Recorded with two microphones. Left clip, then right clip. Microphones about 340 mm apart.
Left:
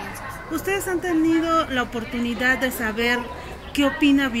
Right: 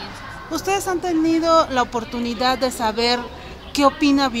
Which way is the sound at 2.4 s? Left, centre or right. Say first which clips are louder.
Right 2 dB; centre.